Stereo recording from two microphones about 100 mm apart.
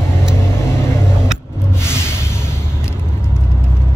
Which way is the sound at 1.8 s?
25° left (ahead or behind).